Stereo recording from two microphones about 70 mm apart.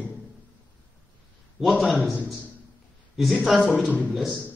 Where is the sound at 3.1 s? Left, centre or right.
Centre.